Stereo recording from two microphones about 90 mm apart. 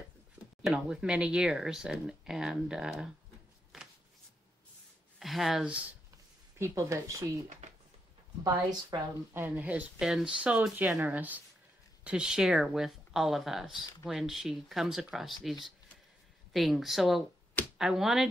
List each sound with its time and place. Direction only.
0.6 s speech: 10° right (ahead or behind)
5.2 s speech: centre (ahead or behind)
5.7 s speech: 15° right (ahead or behind)
6.6 s speech: 35° right (ahead or behind)
8.9 s speech: 50° right (ahead or behind)
9.3 s speech: 20° right (ahead or behind); by 15.5 s centre (ahead or behind)
16.5 s speech: centre (ahead or behind)